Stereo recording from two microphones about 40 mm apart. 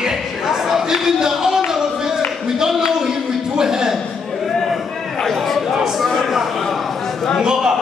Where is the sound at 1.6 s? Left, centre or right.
Centre.